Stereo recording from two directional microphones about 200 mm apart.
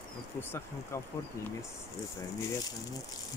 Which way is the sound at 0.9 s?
15° left (ahead or behind).